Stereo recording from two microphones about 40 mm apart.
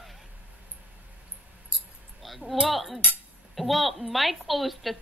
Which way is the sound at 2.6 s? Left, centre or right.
Centre.